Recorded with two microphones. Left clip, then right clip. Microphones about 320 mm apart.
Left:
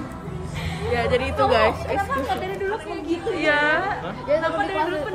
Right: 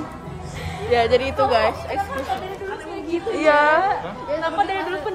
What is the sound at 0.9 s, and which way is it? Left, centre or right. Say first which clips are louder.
Speech: right 5 dB; centre.